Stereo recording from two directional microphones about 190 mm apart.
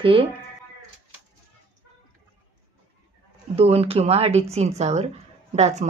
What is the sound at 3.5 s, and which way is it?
A woman's voice, 30° right (ahead or behind).